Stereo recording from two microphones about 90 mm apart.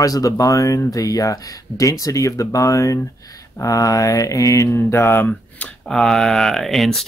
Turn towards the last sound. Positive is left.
turn(degrees=0)  # may be behind; listen again after turning